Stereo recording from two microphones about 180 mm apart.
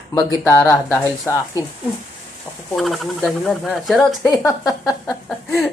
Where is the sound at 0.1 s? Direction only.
15° left (ahead or behind).